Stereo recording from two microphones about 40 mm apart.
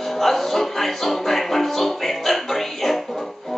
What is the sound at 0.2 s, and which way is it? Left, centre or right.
Music, centre.